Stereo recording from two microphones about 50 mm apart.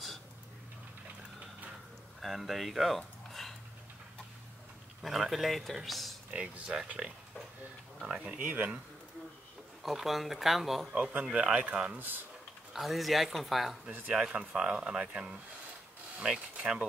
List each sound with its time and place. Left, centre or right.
2.2 s speech: centre
3.3 s a sound: centre
5.0 s speech: centre
6.3 s speech: centre
8.4 s speech: right
9.8 s speech: centre
11.5 s speech: right
12.0 s speech: right
12.7 s speech: centre
14.1 s speech: centre